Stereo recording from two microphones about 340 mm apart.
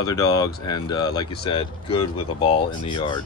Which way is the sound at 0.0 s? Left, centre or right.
Centre.